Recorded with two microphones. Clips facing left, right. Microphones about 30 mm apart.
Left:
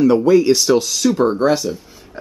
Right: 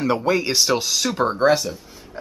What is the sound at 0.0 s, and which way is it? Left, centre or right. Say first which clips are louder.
Speech: left 8 dB; right.